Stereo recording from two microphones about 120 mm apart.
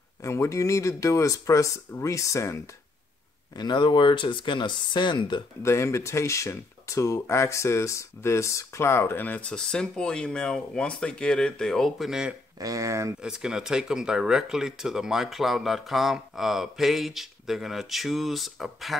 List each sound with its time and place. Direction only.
0.2 s speech: 25° left (ahead or behind)
3.5 s speech: 40° left (ahead or behind)
5.6 s speech: 25° left (ahead or behind); by 12.4 s 5° right (ahead or behind)
12.5 s speech: 30° right (ahead or behind)
13.2 s speech: 5° right (ahead or behind)